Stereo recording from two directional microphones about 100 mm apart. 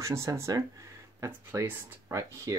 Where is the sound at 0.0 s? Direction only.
30° right (ahead or behind).